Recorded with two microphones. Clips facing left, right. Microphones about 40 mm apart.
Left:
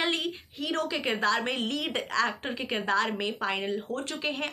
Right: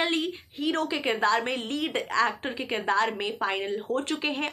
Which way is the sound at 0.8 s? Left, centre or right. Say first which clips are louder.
Right 1 dB; centre.